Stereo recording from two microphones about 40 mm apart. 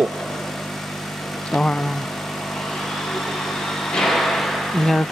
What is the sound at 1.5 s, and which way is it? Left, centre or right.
Speech, centre.